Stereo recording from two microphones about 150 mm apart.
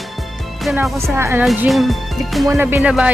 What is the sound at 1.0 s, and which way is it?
Speech, 15° right (ahead or behind).